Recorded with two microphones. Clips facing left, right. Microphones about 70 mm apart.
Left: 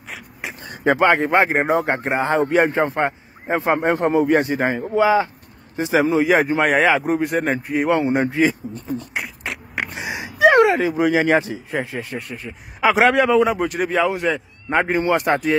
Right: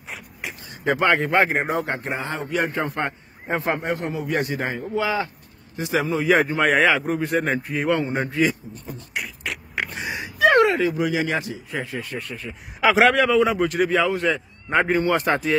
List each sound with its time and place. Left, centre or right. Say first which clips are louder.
0.9 s speech: left 3 dB; left
6.3 s speech: left 2 dB; centre
7.0 s speech: left 4 dB; centre
7.2 s speech: left 2 dB; centre
7.7 s speech: left 6 dB; centre
9.9 s a sound: left 2 dB; centre
11.1 s speech: left 7 dB; left
12.2 s speech: left 1 dB; centre